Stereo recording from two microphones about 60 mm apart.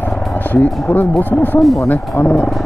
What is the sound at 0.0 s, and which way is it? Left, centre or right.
Speech, left.